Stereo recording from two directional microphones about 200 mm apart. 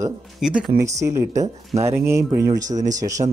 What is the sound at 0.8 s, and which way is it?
Speech, 15° right (ahead or behind).